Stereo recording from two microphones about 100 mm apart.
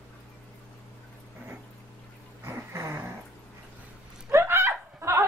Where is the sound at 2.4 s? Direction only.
25° right (ahead or behind).